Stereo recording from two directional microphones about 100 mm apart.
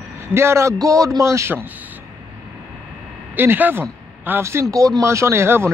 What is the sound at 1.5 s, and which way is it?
Speech, 15° right (ahead or behind).